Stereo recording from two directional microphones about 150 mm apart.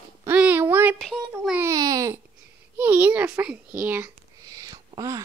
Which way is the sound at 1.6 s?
25° right (ahead or behind).